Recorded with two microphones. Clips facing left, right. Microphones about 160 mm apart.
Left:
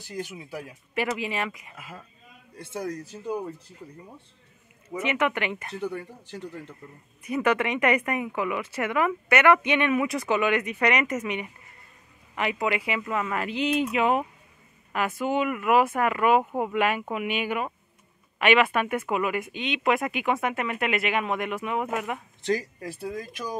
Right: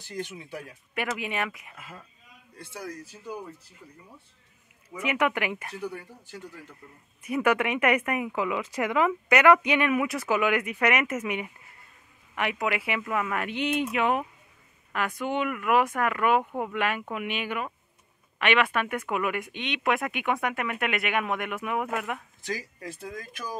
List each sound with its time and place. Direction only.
0.0 s speech: 10° left (ahead or behind)
0.9 s speech: centre (ahead or behind)
2.7 s speech: 30° left (ahead or behind)
5.0 s speech: 10° right (ahead or behind)
5.8 s a man's voice: 30° left (ahead or behind)
7.2 s speech: 10° right (ahead or behind)
22.4 s speech: 30° left (ahead or behind)
23.0 s a man's voice: 20° left (ahead or behind)